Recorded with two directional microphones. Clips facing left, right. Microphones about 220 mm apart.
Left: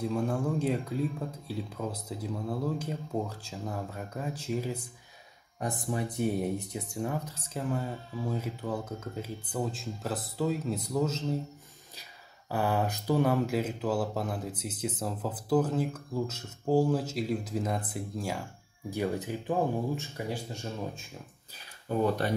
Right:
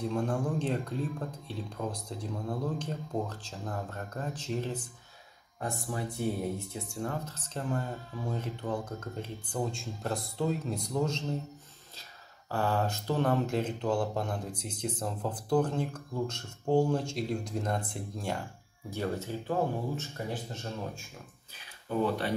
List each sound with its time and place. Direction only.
0.0 s speech: 5° left (ahead or behind)
5.6 s speech: 20° left (ahead or behind)
12.4 s speech: 15° left (ahead or behind)
18.9 s speech: 15° left (ahead or behind)
21.8 s speech: 45° left (ahead or behind)